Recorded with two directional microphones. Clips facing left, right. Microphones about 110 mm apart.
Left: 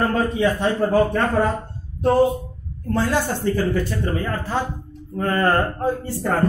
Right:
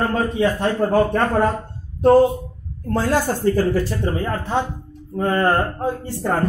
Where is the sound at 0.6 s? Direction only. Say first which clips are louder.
Even; 55° right (ahead or behind).